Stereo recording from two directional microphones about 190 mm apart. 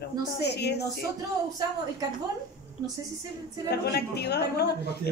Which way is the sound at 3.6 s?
60° left (ahead or behind).